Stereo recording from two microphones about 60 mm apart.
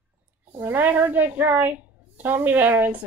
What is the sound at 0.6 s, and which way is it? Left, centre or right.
Speech, right.